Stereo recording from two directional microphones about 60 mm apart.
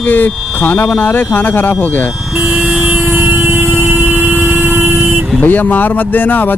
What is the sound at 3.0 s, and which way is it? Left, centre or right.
Vehicle, right.